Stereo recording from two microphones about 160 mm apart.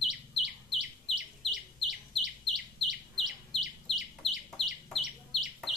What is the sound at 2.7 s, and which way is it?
Chicken, centre (ahead or behind).